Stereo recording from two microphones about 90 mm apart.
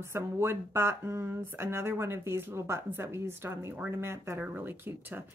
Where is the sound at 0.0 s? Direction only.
30° right (ahead or behind).